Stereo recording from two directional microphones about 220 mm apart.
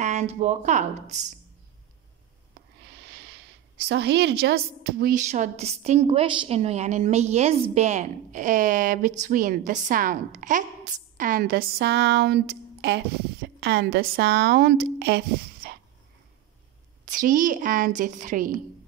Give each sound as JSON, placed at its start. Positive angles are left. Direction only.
{"t": 0.0, "sound": "a woman's voice", "side_deg": -30}
{"t": 3.9, "sound": "a woman's voice", "side_deg": -50}
{"t": 5.3, "sound": "a woman's voice", "side_deg": -30}
{"t": 10.9, "sound": "a sound", "side_deg": -35}
{"t": 17.0, "sound": "a woman's voice", "side_deg": -40}